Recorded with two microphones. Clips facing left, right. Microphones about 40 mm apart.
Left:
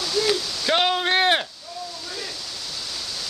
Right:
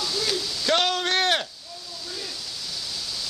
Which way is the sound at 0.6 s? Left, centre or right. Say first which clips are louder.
Left 2 dB; centre.